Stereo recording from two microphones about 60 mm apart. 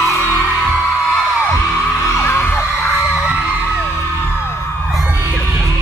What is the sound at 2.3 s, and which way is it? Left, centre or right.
Music, left.